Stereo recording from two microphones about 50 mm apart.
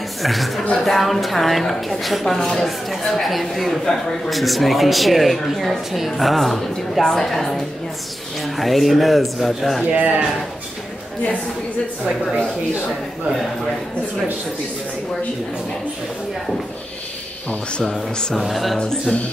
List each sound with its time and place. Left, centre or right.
0.2 s speech: centre
9.8 s speech: right
18.3 s speech: centre
18.8 s speech: centre